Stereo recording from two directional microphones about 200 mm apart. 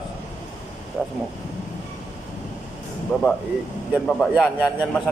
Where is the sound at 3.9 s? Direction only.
Centre (ahead or behind).